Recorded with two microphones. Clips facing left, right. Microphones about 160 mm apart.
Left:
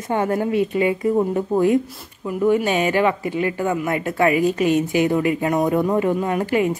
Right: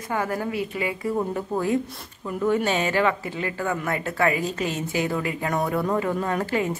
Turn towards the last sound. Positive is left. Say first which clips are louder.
# left 5 dB
turn(degrees=15)  # may be behind; listen again after turning